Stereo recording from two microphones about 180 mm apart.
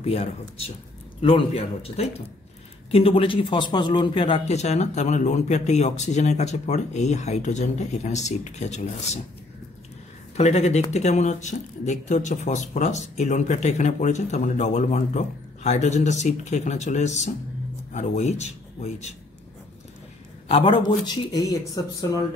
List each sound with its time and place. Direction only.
0.0 s a man's voice: 35° left (ahead or behind)
10.3 s a man's voice: 35° left (ahead or behind)
20.4 s speech: 30° left (ahead or behind)